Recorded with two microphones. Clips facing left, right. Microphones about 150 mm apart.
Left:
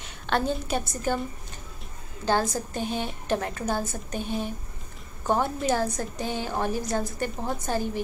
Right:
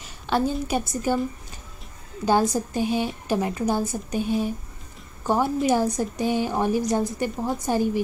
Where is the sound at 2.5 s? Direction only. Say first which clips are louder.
Right 6 dB; 10° right (ahead or behind).